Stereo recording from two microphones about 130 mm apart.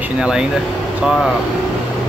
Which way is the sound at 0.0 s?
5° right (ahead or behind).